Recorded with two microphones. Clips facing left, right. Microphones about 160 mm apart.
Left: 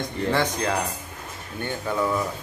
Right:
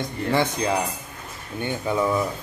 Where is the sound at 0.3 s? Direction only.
10° right (ahead or behind).